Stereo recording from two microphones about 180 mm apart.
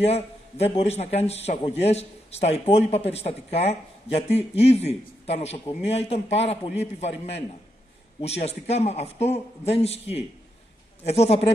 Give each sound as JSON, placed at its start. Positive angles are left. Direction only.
{"t": 0.0, "sound": "a man's voice", "side_deg": 35}